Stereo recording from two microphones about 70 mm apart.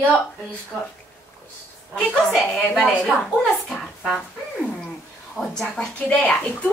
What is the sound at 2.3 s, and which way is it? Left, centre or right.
A woman's voice, centre.